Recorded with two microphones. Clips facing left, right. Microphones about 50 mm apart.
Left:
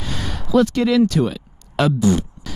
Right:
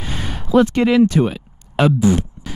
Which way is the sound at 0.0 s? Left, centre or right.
Centre.